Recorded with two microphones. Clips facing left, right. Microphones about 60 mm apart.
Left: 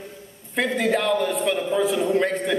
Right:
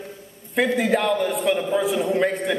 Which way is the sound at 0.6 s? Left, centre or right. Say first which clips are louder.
Right 2 dB; centre.